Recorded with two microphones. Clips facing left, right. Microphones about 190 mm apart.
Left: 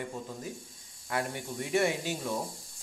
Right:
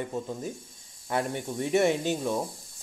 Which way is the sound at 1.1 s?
25° right (ahead or behind).